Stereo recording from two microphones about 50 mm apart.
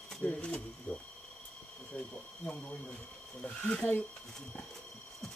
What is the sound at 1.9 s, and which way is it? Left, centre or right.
Speech, left.